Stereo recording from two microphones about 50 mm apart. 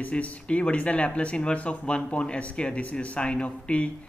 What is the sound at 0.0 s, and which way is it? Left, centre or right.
Speech, left.